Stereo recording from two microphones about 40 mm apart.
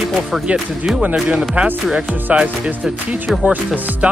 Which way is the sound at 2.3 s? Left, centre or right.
Right.